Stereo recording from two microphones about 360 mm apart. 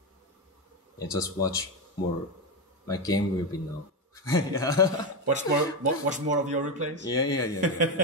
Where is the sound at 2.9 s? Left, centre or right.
Centre.